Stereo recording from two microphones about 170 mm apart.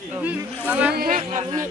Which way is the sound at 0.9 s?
50° right (ahead or behind).